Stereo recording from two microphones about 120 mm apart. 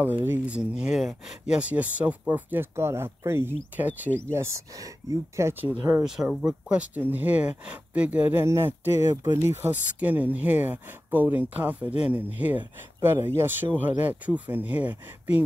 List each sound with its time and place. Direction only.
0.2 s speech: 15° right (ahead or behind)
6.0 s speech: 5° right (ahead or behind)